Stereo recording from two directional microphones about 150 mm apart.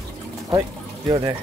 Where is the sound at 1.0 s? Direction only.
25° right (ahead or behind).